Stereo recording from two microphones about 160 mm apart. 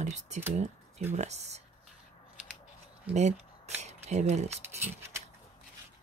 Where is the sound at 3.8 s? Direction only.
45° right (ahead or behind).